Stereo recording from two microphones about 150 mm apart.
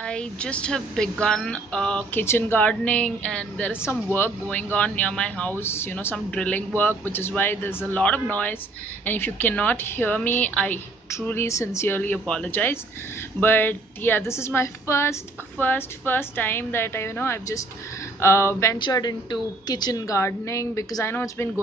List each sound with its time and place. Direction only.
0.0 s a woman's voice: 5° left (ahead or behind)